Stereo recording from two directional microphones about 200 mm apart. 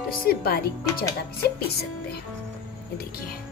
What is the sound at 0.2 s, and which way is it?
Speech, 50° left (ahead or behind).